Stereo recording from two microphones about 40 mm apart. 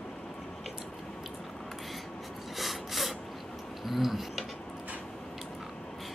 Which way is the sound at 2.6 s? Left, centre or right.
Centre.